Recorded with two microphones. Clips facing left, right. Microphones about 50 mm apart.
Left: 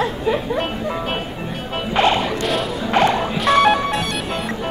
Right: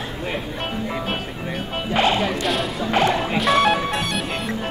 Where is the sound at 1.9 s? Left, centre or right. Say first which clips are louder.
Left 2 dB; centre.